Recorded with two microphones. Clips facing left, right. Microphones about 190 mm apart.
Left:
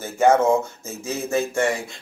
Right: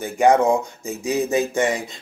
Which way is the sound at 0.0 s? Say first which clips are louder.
Right 1 dB; 15° right (ahead or behind).